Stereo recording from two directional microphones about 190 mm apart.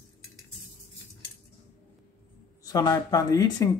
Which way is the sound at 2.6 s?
20° left (ahead or behind).